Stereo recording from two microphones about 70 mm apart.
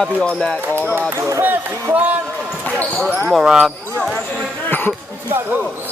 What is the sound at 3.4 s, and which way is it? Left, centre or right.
Speech, centre.